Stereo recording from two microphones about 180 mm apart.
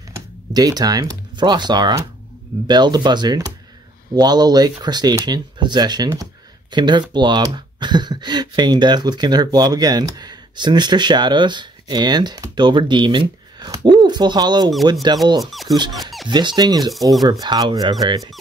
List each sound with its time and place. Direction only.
0.5 s speech: 20° right (ahead or behind)
15.9 s squeak: centre (ahead or behind)
16.3 s speech: 25° right (ahead or behind)